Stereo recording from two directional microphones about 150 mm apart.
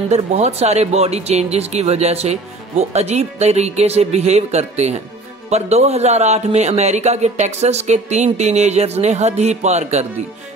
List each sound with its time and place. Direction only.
0.1 s a man's voice: 45° right (ahead or behind)